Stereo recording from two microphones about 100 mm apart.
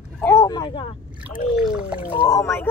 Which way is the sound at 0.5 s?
50° left (ahead or behind).